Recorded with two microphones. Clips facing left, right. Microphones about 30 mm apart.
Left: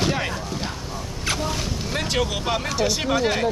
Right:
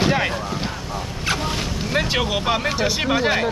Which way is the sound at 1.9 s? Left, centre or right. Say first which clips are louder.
Right 4 dB; right.